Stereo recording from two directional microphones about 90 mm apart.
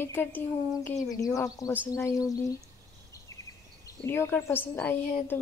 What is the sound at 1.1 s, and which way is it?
A woman's voice, 40° left (ahead or behind).